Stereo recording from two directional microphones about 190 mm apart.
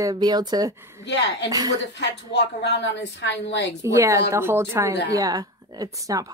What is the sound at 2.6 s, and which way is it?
A woman's voice, 65° left (ahead or behind).